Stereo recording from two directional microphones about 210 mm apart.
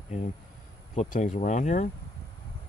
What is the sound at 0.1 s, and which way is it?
Speech, 35° left (ahead or behind).